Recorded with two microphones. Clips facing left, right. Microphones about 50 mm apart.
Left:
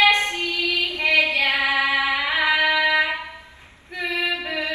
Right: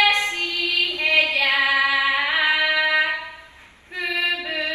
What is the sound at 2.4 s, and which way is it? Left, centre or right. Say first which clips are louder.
Music: left 3 dB; left.